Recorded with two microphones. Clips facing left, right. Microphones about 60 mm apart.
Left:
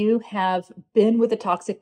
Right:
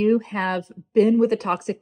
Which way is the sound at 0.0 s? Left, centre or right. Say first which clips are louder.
Even; right.